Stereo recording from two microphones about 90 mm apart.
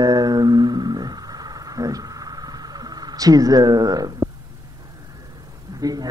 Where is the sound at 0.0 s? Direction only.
50° right (ahead or behind).